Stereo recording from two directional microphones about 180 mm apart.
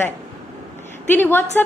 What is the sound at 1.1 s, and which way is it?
Speech, 10° left (ahead or behind).